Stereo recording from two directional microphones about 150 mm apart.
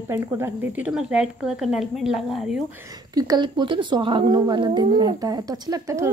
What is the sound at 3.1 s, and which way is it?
A woman's voice, 25° right (ahead or behind).